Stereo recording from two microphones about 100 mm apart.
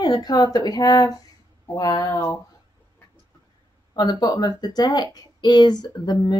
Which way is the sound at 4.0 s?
40° left (ahead or behind).